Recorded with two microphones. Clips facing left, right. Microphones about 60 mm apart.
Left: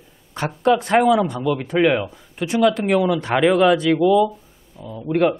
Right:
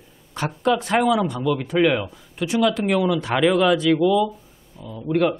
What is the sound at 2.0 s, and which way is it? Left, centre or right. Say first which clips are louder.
A man's voice: left 1 dB; centre.